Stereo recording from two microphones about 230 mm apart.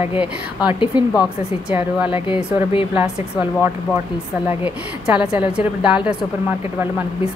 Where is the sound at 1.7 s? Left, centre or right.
Centre.